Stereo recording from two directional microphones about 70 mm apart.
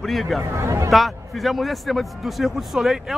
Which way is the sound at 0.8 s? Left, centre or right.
Centre.